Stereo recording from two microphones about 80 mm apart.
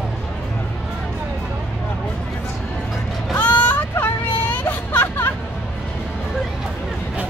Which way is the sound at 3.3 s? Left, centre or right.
Left.